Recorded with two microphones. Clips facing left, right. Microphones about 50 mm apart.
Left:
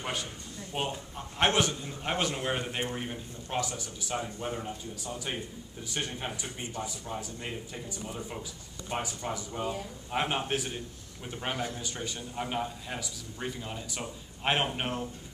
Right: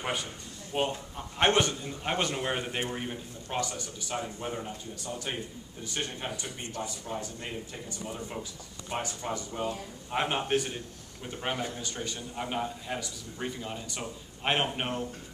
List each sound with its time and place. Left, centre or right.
0.0 s a man's voice: centre
6.4 s speech: centre
7.1 s a man's voice: centre
8.9 s a man's voice: centre